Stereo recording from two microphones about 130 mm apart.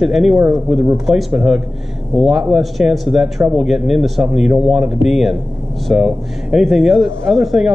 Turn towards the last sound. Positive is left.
turn(degrees=-5)  # may be behind; listen again after turning